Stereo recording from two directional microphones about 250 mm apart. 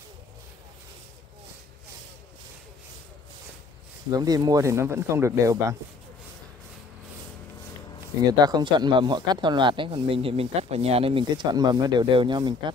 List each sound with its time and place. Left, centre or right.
4.1 s speech: centre
8.3 s speech: centre